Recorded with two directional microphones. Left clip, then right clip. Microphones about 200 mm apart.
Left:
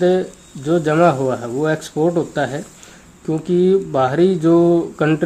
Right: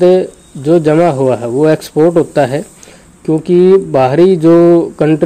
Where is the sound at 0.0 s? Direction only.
25° right (ahead or behind).